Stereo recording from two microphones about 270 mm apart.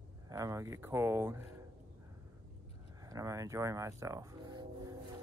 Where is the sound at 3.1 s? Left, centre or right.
Centre.